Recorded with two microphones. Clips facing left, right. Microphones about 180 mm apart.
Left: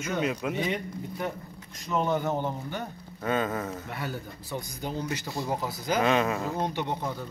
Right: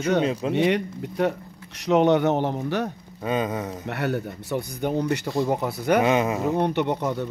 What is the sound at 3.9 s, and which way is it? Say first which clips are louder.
Speech: right 9 dB; 70° right (ahead or behind).